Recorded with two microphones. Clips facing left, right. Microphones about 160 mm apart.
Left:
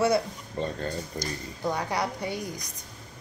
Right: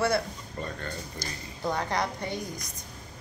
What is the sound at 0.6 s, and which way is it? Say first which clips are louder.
Speech: left 6 dB; 30° left (ahead or behind).